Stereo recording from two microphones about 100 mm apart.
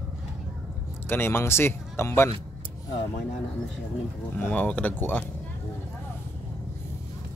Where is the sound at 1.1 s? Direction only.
25° left (ahead or behind).